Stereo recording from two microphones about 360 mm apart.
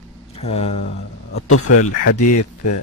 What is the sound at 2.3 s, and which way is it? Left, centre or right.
Speech, left.